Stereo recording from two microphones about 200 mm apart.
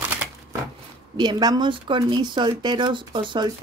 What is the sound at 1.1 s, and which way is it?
Speech, 20° right (ahead or behind).